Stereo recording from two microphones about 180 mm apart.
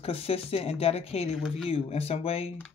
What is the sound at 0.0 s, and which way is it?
Speech, 35° left (ahead or behind).